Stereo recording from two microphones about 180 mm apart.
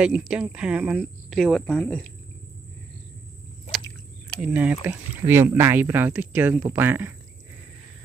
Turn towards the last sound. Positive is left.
turn(degrees=-10)  # may be behind; listen again after turning